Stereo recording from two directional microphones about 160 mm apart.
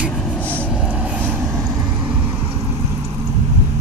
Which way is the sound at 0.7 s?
5° right (ahead or behind).